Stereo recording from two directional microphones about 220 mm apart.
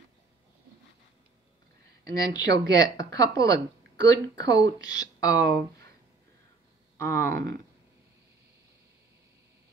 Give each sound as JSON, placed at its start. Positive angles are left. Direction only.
{"t": 2.0, "sound": "speech", "side_deg": 15}
{"t": 7.0, "sound": "speech", "side_deg": 10}